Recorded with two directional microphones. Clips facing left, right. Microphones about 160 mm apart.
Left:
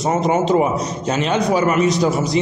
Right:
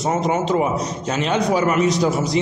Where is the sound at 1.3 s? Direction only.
30° left (ahead or behind).